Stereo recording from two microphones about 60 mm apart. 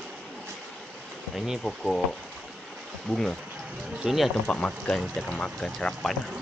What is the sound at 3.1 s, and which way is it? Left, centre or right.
Speech, left.